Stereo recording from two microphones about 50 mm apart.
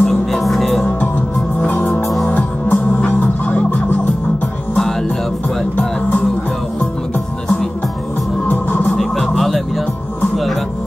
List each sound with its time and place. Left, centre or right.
0.0 s music: centre
1.7 s music: left
8.5 s music: left
8.9 s music: centre